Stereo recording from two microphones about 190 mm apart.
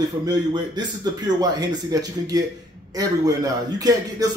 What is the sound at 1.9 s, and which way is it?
Speech, 20° right (ahead or behind).